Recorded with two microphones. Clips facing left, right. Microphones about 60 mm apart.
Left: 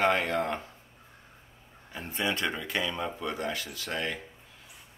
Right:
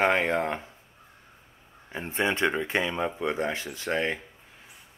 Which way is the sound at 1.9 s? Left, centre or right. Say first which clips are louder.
Right 4 dB; right.